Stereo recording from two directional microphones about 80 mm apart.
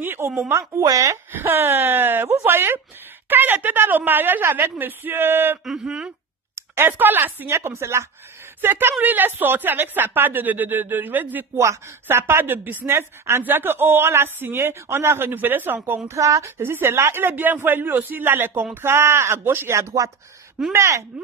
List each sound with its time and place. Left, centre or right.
0.0 s a sound: right
0.4 s speech: right
1.1 s a woman's voice: right
5.7 s speech: centre
6.5 s a sound: right
6.9 s a woman's voice: right
11.5 s a woman's voice: right